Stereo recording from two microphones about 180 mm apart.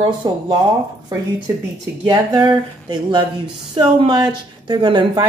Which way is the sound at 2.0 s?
25° right (ahead or behind).